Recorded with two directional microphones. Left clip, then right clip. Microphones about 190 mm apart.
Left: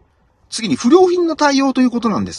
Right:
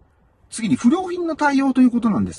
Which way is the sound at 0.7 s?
30° left (ahead or behind).